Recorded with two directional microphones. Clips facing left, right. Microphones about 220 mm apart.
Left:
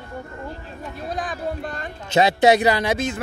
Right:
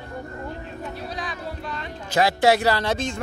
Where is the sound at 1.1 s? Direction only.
50° left (ahead or behind).